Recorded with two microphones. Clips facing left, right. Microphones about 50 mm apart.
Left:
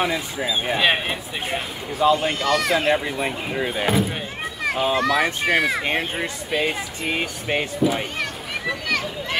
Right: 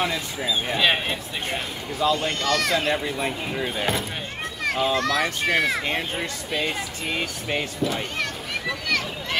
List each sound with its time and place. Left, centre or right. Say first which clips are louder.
0.0 s speech: left 3 dB; centre
2.8 s speech: left 3 dB; centre
5.9 s speech: left 3 dB; left